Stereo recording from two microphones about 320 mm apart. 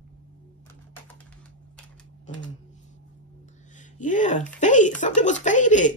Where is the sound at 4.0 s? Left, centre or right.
Left.